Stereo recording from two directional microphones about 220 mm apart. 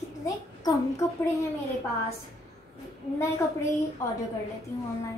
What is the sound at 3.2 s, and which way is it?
Speech, 15° left (ahead or behind).